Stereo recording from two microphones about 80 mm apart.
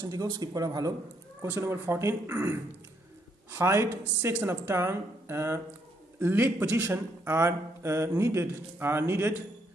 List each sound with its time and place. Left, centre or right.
0.0 s speech: right
1.4 s speech: right
3.5 s a man's voice: right